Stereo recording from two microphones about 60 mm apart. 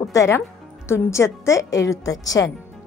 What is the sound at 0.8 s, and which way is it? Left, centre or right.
A woman's voice, left.